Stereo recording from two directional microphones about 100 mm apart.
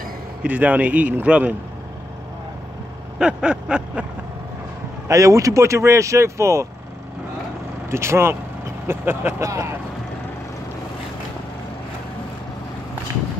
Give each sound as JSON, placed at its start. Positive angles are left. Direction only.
{"t": 0.4, "sound": "a man's voice", "side_deg": -15}
{"t": 3.2, "sound": "a man's voice", "side_deg": -10}
{"t": 5.0, "sound": "speech", "side_deg": -30}
{"t": 7.9, "sound": "speech", "side_deg": -25}